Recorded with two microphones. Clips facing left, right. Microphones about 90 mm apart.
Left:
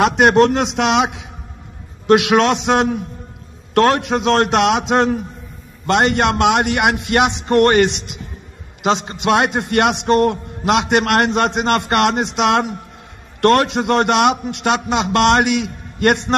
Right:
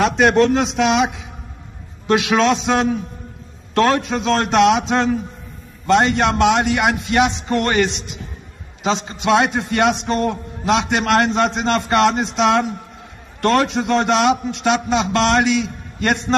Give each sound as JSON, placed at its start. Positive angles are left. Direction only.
{"t": 0.0, "sound": "a man's voice", "side_deg": 65}
{"t": 2.0, "sound": "a man's voice", "side_deg": 60}